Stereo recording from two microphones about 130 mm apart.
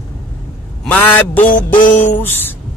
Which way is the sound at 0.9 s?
15° left (ahead or behind).